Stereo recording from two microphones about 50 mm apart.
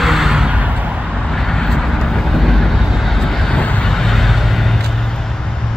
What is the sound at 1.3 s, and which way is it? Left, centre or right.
Vehicle, centre.